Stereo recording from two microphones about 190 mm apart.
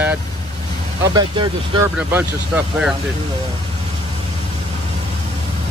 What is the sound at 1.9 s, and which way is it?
Speech, 5° right (ahead or behind).